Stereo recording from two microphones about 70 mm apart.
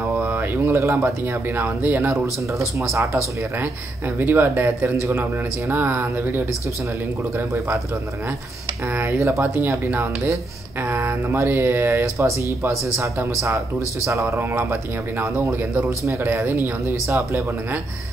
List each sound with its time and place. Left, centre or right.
0.2 s a sound: right
0.6 s speech: right
4.2 s speech: right
7.5 s a man's voice: right
8.8 s speech: right
10.8 s a man's voice: right